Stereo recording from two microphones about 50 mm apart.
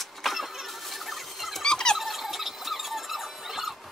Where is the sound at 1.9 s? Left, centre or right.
Centre.